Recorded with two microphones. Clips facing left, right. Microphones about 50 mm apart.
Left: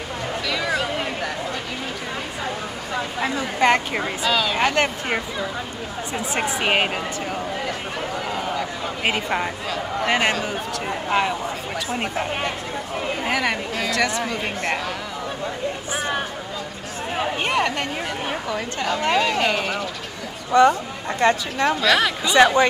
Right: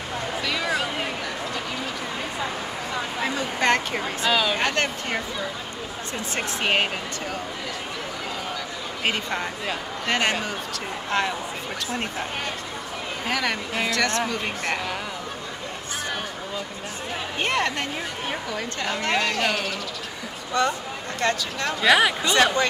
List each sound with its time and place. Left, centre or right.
0.5 s music: centre
3.2 s a woman's voice: centre
4.2 s a woman's voice: centre
4.6 s a woman's voice: centre
6.3 s a woman's voice: centre
9.0 s a woman's voice: centre
13.3 s a woman's voice: centre
17.4 s a sound: centre
18.9 s speech: centre
21.8 s speech: centre
22.3 s speech: centre